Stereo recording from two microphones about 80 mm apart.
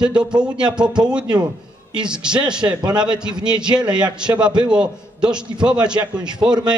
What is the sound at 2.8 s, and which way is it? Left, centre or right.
Speech, right.